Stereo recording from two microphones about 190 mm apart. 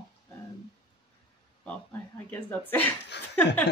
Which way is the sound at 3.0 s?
65° left (ahead or behind).